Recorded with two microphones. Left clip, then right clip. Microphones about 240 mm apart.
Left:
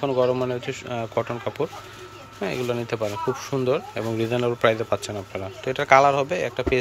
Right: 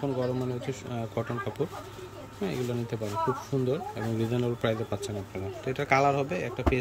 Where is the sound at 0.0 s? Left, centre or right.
Left.